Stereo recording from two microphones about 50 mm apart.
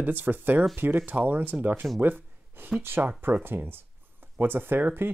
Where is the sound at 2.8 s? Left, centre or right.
Right.